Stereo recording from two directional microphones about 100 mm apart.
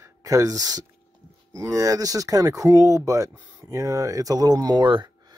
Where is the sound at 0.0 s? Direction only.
35° right (ahead or behind).